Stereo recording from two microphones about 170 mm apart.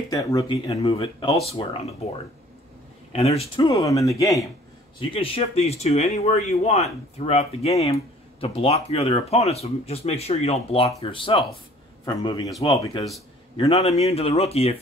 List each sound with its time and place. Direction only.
0.1 s a man's voice: 20° left (ahead or behind)
0.8 s speech: 35° left (ahead or behind)
3.1 s a man's voice: 35° left (ahead or behind); by 4.5 s 20° left (ahead or behind)
5.1 s a man's voice: 35° left (ahead or behind)
13.6 s speech: 40° left (ahead or behind)